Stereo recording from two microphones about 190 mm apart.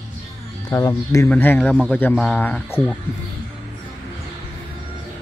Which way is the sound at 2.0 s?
10° left (ahead or behind).